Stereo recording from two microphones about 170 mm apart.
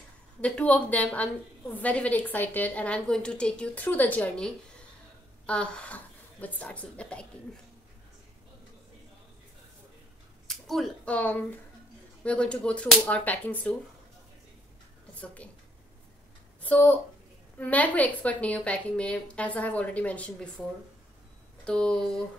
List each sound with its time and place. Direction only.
0.4 s a woman's voice: 5° left (ahead or behind)
10.4 s a woman's voice: centre (ahead or behind)
16.6 s a woman's voice: 10° left (ahead or behind)
21.6 s speech: 5° left (ahead or behind)